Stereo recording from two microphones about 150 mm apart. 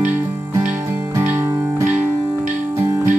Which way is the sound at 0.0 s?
10° right (ahead or behind).